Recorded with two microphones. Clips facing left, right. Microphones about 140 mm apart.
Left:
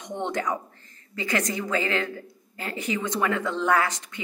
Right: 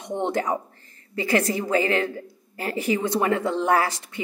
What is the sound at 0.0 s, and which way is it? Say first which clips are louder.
A woman's voice: right 3 dB; 30° right (ahead or behind).